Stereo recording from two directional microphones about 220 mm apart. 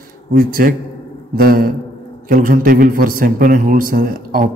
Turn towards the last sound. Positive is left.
turn(degrees=-40)  # may be behind; listen again after turning